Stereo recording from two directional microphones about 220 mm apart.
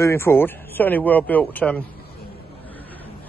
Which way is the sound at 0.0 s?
10° left (ahead or behind).